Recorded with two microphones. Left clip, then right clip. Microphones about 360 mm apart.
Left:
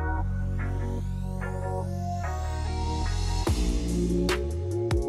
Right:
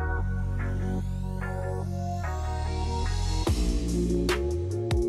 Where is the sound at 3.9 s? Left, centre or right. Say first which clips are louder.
Even; centre.